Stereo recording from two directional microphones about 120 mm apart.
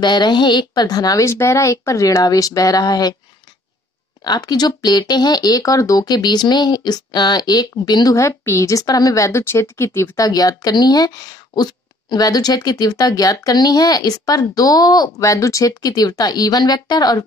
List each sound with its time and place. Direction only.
0.0 s speech: 40° left (ahead or behind)
4.2 s speech: 35° left (ahead or behind)